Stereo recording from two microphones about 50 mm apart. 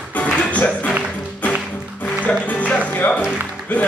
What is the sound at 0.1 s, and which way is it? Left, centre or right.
Music, left.